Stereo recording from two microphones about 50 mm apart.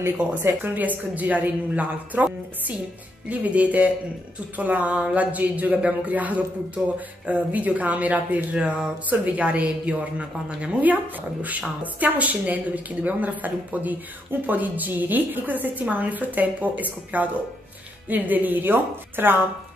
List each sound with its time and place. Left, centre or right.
0.7 s a woman's voice: right
8.5 s a woman's voice: centre; by 19.4 s right